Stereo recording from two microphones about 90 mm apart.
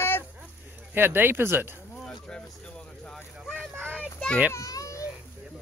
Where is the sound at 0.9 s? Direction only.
25° right (ahead or behind).